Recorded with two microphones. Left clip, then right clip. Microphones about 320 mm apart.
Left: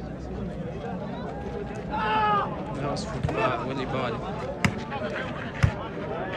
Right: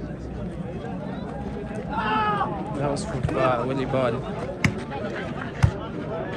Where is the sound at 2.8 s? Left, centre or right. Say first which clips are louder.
Right 5 dB; centre.